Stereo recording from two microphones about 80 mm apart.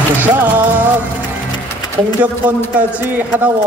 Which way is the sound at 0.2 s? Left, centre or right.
Right.